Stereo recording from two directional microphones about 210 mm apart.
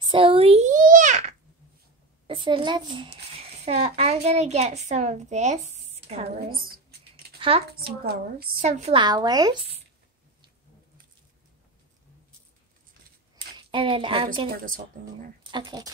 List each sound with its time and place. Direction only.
0.0 s babbling: 25° right (ahead or behind)
2.2 s a child's voice: 25° right (ahead or behind)
6.5 s computer keyboard: 45° right (ahead or behind)
7.3 s a sound: 25° right (ahead or behind)
7.7 s a woman's voice: 45° right (ahead or behind); by 9.8 s 20° right (ahead or behind)
13.6 s a woman's voice: 25° right (ahead or behind)
14.5 s a woman's voice: 40° right (ahead or behind)
15.5 s speech: 20° right (ahead or behind)